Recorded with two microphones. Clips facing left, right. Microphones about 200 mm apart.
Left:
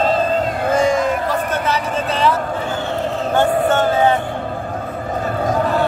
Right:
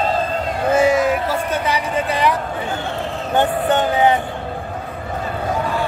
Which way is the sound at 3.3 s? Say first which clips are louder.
Left 1 dB; 15° right (ahead or behind).